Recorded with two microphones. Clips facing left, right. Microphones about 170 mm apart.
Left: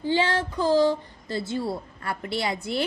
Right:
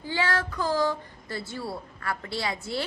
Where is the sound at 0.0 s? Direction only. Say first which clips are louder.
Left 4 dB; 20° left (ahead or behind).